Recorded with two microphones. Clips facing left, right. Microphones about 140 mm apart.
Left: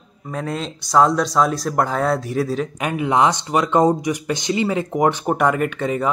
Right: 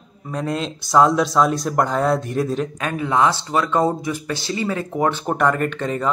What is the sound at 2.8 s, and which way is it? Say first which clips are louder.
Speech: left 2 dB; 15° left (ahead or behind).